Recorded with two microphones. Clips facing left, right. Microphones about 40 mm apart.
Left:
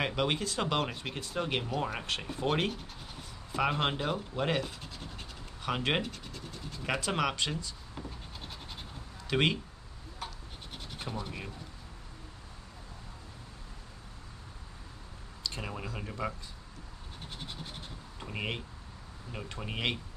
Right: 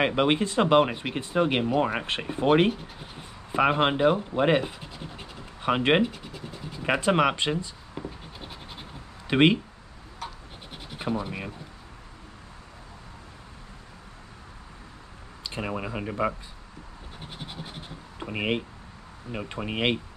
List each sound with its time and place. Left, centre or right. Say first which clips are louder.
0.0 s speech: right 8 dB; right
5.6 s speech: right 9 dB; right
6.0 s scratch: right 7 dB; centre
6.8 s scratch: right 9 dB; right
9.3 s speech: right 9 dB; right
10.2 s scratch: right 4 dB; centre
15.4 s speech: right 7 dB; right
17.2 s scratch: right 4 dB; centre
18.2 s speech: right 9 dB; right